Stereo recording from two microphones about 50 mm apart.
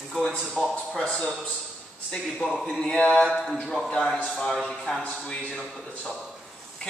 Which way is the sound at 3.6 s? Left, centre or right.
Centre.